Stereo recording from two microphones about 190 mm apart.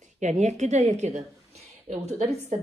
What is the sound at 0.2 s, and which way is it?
Speech, 40° right (ahead or behind).